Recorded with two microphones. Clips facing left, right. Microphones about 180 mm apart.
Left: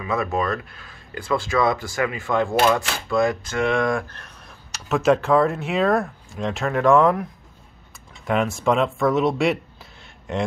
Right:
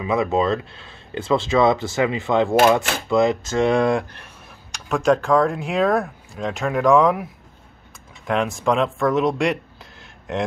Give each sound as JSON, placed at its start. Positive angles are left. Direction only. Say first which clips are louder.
{"t": 0.0, "sound": "speech", "louder": "right 4 dB", "side_deg": -20}
{"t": 4.7, "sound": "speech", "louder": "even", "side_deg": 5}
{"t": 8.3, "sound": "speech", "louder": "even", "side_deg": 0}